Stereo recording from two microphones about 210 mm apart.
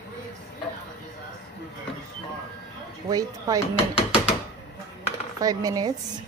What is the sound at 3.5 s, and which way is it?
Speech, 15° right (ahead or behind).